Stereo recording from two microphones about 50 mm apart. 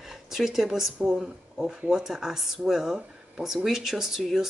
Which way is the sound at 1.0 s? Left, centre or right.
Centre.